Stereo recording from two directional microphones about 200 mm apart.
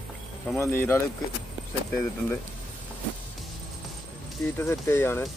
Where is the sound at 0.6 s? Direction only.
10° left (ahead or behind).